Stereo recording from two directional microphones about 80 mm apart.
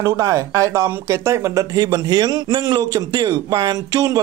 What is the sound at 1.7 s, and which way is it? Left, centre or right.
A man's voice, right.